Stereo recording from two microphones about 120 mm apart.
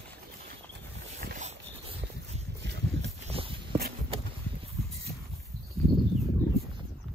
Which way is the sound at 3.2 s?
50° right (ahead or behind).